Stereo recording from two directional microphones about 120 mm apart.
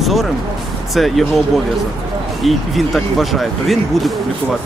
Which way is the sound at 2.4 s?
Centre (ahead or behind).